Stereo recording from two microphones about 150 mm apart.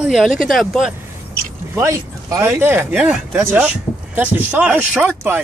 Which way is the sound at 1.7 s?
20° right (ahead or behind).